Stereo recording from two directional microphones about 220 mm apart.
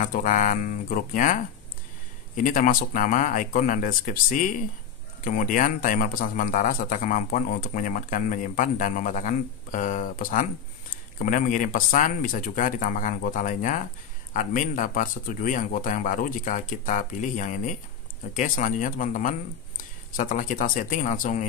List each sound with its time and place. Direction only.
0.0 s speech: 35° left (ahead or behind)